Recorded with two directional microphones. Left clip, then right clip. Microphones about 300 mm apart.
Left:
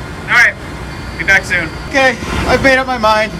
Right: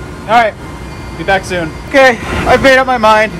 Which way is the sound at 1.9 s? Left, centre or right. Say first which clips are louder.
Right 5 dB; centre.